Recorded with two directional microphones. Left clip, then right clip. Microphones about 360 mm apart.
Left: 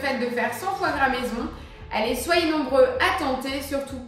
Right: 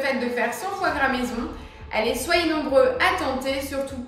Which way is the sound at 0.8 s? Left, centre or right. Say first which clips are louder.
Right 2 dB; centre.